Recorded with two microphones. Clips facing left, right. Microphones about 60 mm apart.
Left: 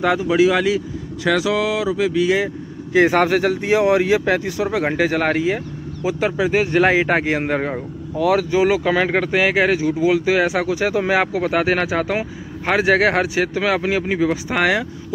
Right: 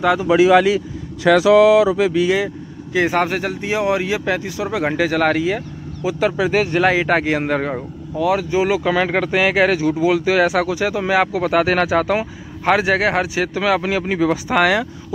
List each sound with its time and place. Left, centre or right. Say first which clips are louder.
0.3 s speech: right 5 dB; right
1.2 s a sound: right 8 dB; right
2.9 s a man's voice: left 3 dB; left
3.3 s speech: left 5 dB; left
4.9 s speech: right 4 dB; left
6.4 s speech: left 2 dB; centre
6.8 s speech: left 1 dB; left
8.2 s speech: left 1 dB; left
8.8 s speech: even; left
10.8 s speech: left 2 dB; left
11.4 s speech: right 2 dB; left
12.8 s speech: left 1 dB; left; by 15.1 s centre